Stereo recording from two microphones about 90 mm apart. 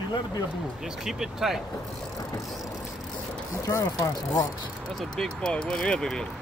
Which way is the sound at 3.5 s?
35° left (ahead or behind).